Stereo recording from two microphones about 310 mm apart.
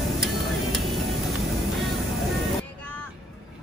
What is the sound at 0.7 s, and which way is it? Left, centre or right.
Music, centre.